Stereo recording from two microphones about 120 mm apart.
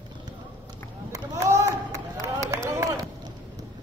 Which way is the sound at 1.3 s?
25° right (ahead or behind).